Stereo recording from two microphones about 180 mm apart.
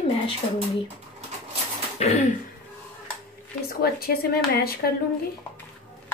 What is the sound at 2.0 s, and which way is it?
Throat clearing, 40° left (ahead or behind).